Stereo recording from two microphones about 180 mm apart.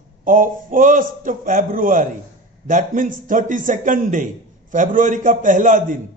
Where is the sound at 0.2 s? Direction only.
45° right (ahead or behind).